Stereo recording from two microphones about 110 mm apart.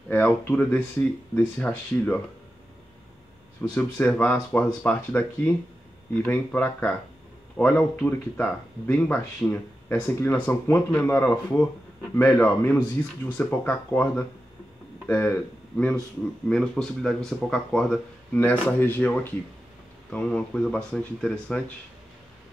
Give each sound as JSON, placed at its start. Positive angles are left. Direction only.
{"t": 0.1, "sound": "speech", "side_deg": 15}
{"t": 3.7, "sound": "speech", "side_deg": 15}
{"t": 16.4, "sound": "speech", "side_deg": 5}